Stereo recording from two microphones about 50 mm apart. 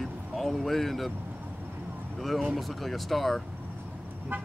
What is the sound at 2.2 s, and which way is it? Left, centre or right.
Speech, centre.